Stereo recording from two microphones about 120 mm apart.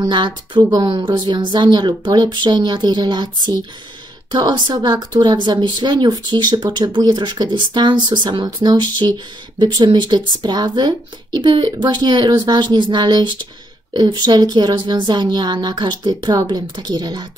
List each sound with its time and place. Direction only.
0.0 s speech: 40° right (ahead or behind)
4.3 s speech: 35° right (ahead or behind)